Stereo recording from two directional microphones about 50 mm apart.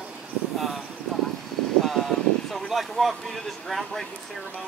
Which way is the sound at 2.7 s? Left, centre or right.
Centre.